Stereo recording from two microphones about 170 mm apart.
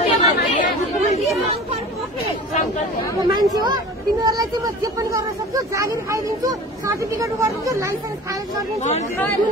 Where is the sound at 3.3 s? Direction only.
25° right (ahead or behind).